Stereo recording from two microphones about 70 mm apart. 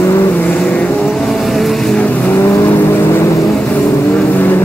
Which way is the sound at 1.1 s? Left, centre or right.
Centre.